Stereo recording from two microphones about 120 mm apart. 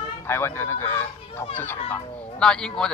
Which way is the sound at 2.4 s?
5° left (ahead or behind).